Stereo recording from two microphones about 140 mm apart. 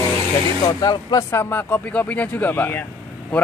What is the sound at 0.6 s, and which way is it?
Speech, 30° left (ahead or behind).